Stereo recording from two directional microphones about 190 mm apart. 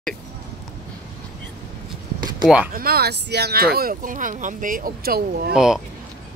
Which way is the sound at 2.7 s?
50° right (ahead or behind).